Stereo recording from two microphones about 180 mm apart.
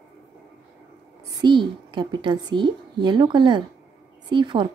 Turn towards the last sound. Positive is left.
turn(degrees=-25)  # may be behind; listen again after turning